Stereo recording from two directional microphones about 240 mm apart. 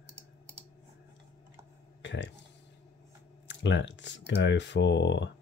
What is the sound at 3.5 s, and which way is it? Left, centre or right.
Speech, left.